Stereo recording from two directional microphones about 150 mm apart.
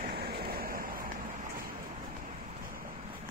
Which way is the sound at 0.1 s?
90° right.